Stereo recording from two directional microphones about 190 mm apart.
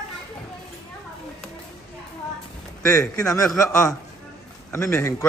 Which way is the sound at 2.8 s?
15° left (ahead or behind).